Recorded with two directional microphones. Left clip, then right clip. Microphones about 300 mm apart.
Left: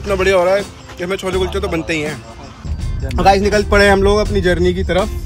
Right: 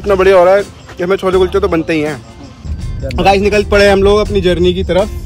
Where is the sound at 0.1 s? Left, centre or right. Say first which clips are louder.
Right 6 dB; right.